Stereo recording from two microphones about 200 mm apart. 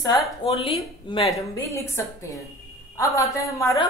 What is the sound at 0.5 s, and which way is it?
Speech, 30° left (ahead or behind).